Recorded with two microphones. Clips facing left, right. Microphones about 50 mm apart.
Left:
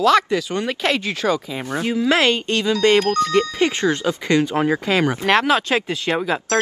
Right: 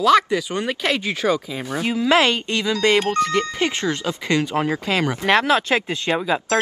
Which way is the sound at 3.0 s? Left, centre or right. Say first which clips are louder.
Left 2 dB; right.